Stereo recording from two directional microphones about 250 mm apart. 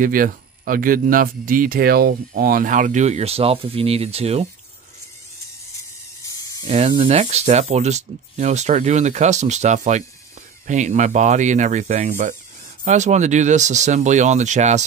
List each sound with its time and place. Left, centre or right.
0.0 s speech: right
6.7 s speech: right